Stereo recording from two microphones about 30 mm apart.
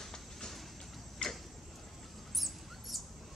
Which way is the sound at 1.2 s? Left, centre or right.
Left.